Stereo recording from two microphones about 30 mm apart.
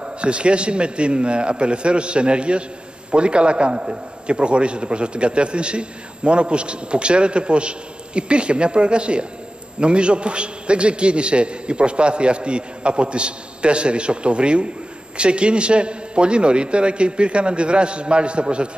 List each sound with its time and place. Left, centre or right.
0.0 s a man's voice: right